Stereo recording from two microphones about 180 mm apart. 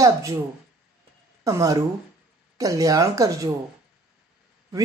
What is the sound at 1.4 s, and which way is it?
Speech, 20° right (ahead or behind).